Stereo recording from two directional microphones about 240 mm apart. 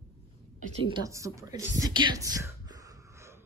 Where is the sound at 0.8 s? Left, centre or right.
Centre.